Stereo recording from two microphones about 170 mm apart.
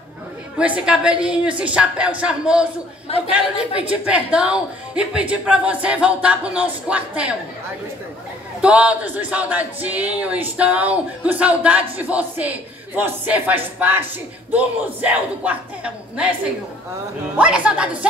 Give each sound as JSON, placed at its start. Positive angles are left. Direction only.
{"t": 0.6, "sound": "speech", "side_deg": -5}
{"t": 3.9, "sound": "speech", "side_deg": -5}
{"t": 8.5, "sound": "a woman's voice", "side_deg": -5}